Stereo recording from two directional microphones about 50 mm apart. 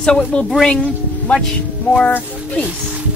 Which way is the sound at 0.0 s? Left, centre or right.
Centre.